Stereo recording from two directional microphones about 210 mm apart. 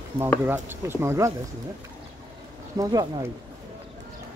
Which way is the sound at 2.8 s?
15° right (ahead or behind).